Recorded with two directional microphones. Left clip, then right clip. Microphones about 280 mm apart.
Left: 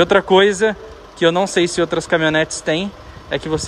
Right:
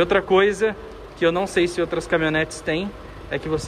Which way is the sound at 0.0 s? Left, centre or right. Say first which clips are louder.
Left 5 dB; centre.